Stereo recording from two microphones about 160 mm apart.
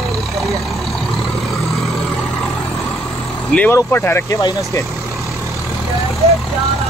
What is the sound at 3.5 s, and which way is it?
Speech, 10° left (ahead or behind).